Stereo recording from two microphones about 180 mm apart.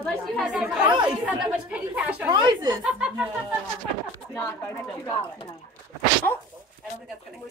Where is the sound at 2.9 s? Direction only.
5° right (ahead or behind).